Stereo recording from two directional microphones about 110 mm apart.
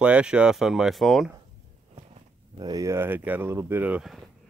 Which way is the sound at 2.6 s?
35° right (ahead or behind).